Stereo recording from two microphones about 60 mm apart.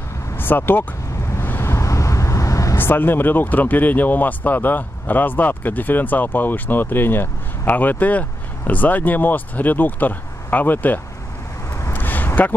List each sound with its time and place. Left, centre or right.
0.4 s speech: left
1.3 s vehicle: left
1.7 s vehicle: left
2.8 s speech: left
11.9 s a sound: left